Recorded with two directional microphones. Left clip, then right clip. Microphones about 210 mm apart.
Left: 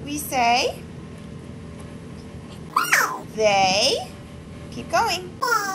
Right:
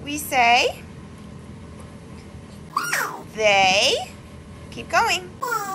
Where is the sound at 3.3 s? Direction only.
15° left (ahead or behind).